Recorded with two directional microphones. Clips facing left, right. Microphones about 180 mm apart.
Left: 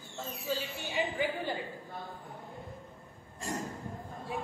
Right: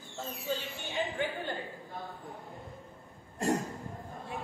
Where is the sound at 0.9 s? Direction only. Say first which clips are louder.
Left 1 dB; 10° left (ahead or behind).